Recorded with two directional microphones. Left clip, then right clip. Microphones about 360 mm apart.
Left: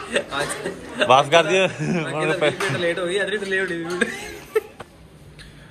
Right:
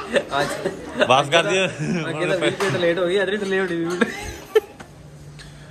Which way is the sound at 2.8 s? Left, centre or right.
Right.